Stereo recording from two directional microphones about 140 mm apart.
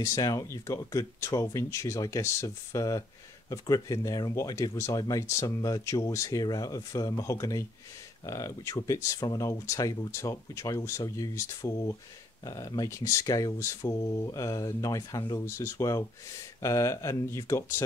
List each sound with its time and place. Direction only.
0.0 s speech: 25° left (ahead or behind)